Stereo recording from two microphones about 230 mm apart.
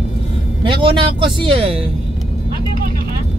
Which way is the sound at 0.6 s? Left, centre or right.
Right.